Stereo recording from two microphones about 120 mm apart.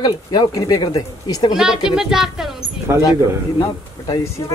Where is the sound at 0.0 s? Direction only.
35° left (ahead or behind).